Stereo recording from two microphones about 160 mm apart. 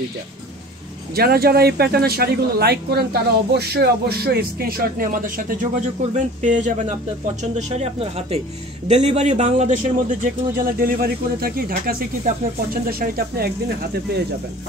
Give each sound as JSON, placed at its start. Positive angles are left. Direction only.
{"t": 1.1, "sound": "a man's voice", "side_deg": -75}
{"t": 10.2, "sound": "speech", "side_deg": -60}